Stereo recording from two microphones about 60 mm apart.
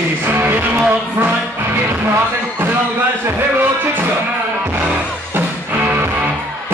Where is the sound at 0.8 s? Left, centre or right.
Right.